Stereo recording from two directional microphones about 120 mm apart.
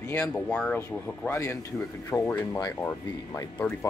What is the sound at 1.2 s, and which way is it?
Speech, 20° left (ahead or behind).